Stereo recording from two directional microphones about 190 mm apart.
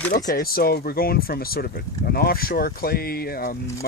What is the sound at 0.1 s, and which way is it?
Speech, 50° left (ahead or behind).